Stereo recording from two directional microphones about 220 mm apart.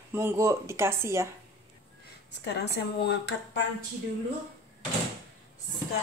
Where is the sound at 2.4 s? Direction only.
50° left (ahead or behind).